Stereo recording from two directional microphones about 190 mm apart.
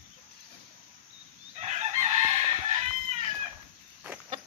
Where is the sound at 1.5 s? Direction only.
35° right (ahead or behind).